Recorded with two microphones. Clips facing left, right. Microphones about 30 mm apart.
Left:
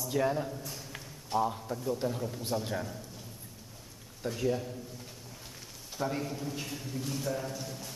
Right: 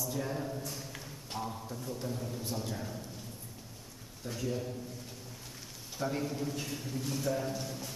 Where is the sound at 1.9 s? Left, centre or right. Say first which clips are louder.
Left 5 dB; left.